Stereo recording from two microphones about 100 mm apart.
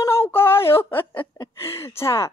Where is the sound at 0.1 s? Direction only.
25° left (ahead or behind).